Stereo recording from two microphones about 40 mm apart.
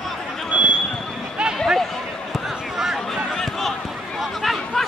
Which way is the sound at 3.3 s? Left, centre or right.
Centre.